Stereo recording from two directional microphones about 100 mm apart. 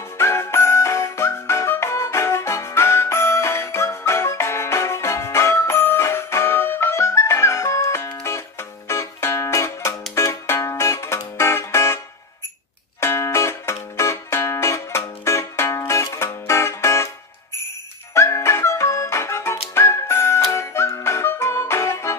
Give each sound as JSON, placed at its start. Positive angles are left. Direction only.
{"t": 0.2, "sound": "music", "side_deg": 25}
{"t": 13.0, "sound": "music", "side_deg": 25}
{"t": 18.1, "sound": "music", "side_deg": 25}